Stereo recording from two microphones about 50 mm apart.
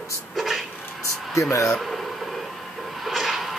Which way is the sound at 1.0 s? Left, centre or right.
Left.